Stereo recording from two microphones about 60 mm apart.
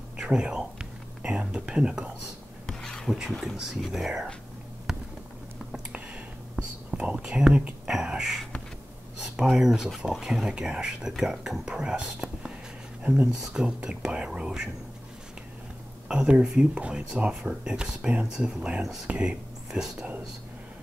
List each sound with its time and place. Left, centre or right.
0.2 s speech: centre
2.6 s a sound: centre
3.3 s speech: centre
4.9 s a sound: centre
6.5 s whispering: centre
7.9 s a sound: centre
9.4 s speech: centre
10.5 s speech: centre
16.1 s speech: centre
18.8 s speech: centre
19.0 s speech: centre